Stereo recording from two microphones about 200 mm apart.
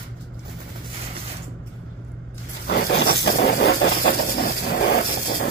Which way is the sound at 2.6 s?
55° left (ahead or behind).